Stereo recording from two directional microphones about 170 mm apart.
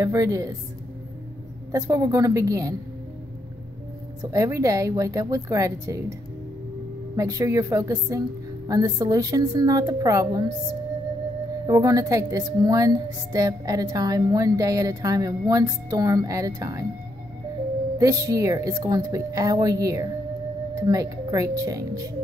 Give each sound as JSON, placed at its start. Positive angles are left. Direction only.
{"t": 0.0, "sound": "a woman's voice", "side_deg": -20}
{"t": 1.7, "sound": "a woman's voice", "side_deg": -20}
{"t": 4.2, "sound": "a woman's voice", "side_deg": -20}
{"t": 7.2, "sound": "a woman's voice", "side_deg": -20}
{"t": 11.6, "sound": "a woman's voice", "side_deg": -20}
{"t": 17.9, "sound": "a woman's voice", "side_deg": -20}